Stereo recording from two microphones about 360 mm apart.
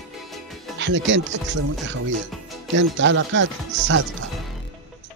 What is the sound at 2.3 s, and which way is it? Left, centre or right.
Music, centre.